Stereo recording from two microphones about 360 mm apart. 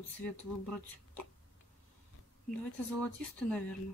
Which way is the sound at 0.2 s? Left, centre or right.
Centre.